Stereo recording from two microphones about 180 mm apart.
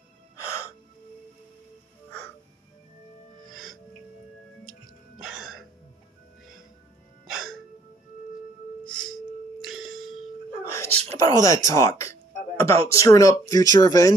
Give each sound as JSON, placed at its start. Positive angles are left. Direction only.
{"t": 0.4, "sound": "music", "side_deg": 15}
{"t": 3.3, "sound": "music", "side_deg": 0}
{"t": 5.2, "sound": "music", "side_deg": 0}
{"t": 7.2, "sound": "music", "side_deg": 0}
{"t": 8.8, "sound": "music", "side_deg": 5}
{"t": 10.7, "sound": "speech", "side_deg": 15}